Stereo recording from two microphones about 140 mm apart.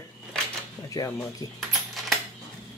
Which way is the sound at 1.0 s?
25° left (ahead or behind).